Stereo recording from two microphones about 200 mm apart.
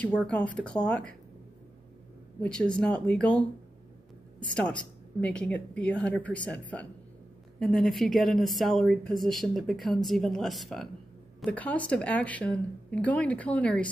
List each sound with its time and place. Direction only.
0.0 s a woman's voice: 5° left (ahead or behind)
2.4 s a woman's voice: 5° left (ahead or behind)